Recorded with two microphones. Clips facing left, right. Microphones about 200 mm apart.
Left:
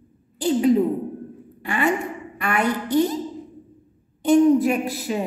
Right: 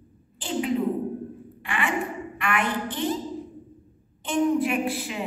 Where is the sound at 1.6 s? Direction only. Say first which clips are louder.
Left 7 dB; 40° left (ahead or behind).